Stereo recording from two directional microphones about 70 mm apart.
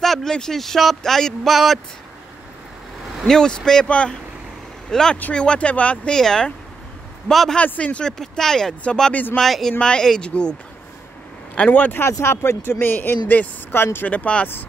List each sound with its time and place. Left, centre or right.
0.0 s speech: centre
3.3 s speech: centre
6.1 s speech: centre
7.6 s speech: centre
8.2 s speech: centre
9.1 s speech: left
9.4 s speech: centre
11.5 s speech: left
12.0 s speech: left